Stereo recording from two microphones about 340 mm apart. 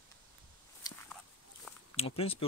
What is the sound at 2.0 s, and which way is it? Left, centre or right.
Speech, centre.